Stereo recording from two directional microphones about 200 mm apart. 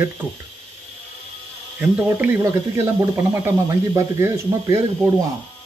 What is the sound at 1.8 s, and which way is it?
Speech, 10° right (ahead or behind).